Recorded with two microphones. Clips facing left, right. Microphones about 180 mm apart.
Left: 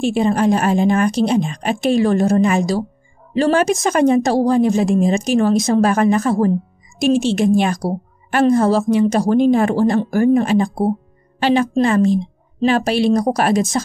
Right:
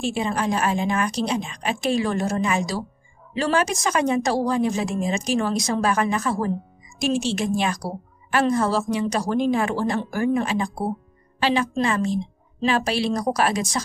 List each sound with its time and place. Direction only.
0.0 s a woman's voice: 50° left (ahead or behind)